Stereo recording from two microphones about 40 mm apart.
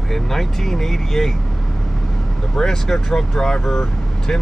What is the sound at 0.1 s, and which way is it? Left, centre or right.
Speech, centre.